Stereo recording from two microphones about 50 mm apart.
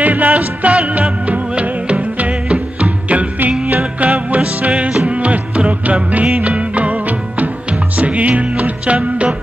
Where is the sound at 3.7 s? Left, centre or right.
Right.